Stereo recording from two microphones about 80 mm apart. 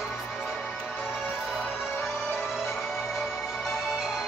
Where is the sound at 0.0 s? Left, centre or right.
Centre.